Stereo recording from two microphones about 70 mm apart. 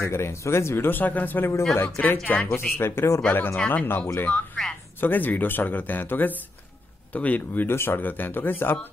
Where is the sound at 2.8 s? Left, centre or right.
Left.